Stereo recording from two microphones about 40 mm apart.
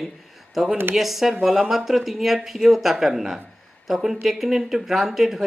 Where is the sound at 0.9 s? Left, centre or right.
Centre.